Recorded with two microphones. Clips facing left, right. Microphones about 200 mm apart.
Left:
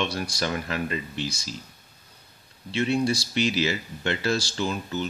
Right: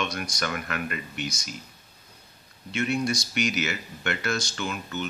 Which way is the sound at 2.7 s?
30° left (ahead or behind).